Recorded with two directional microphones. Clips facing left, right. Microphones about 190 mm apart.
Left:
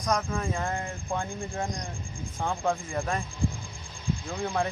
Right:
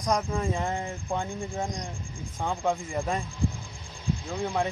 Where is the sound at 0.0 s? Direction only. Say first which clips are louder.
Right 1 dB; 20° right (ahead or behind).